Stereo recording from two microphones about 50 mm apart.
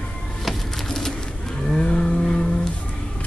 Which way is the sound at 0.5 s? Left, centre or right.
Centre.